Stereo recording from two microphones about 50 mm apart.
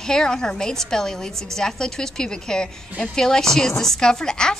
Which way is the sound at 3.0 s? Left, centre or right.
Centre.